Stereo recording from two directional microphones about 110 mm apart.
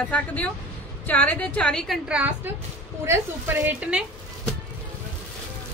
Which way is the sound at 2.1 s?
15° right (ahead or behind).